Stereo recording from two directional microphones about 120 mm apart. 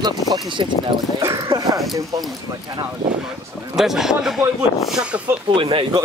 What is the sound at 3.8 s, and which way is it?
Speech, 5° right (ahead or behind).